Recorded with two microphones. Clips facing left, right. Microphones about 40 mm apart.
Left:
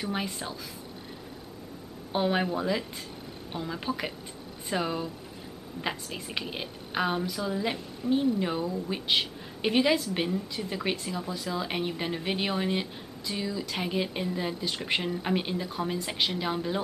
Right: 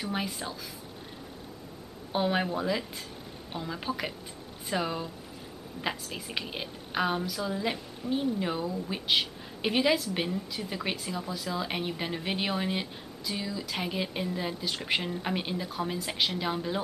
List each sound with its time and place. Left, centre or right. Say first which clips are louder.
0.0 s a woman's voice: left 1 dB; centre
2.1 s a woman's voice: left 1 dB; centre